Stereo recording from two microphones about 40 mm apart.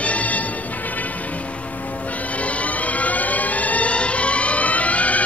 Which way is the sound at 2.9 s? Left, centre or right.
Left.